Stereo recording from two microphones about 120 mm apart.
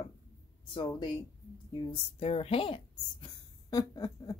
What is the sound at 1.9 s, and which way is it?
A woman's voice, 55° left (ahead or behind).